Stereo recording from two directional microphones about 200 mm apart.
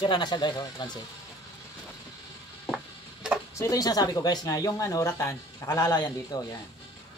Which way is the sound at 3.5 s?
15° left (ahead or behind).